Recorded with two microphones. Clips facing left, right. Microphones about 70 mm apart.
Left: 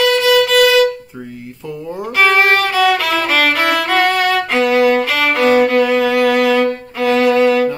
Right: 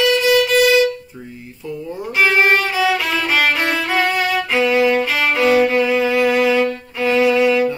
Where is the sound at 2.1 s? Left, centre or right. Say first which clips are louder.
Left 2 dB; left.